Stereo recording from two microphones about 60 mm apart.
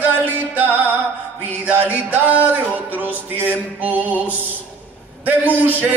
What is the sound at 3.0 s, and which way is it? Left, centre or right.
Music, right.